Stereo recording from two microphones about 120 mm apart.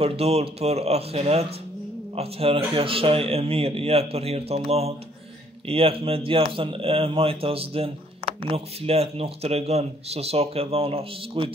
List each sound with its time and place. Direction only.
0.0 s speech: 55° right (ahead or behind)